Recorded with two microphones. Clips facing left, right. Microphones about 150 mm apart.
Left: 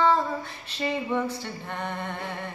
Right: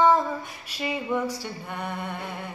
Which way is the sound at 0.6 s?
10° right (ahead or behind).